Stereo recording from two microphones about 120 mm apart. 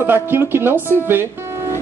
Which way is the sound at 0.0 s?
20° right (ahead or behind).